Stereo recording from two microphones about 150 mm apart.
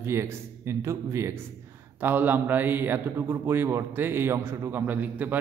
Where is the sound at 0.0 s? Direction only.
15° right (ahead or behind).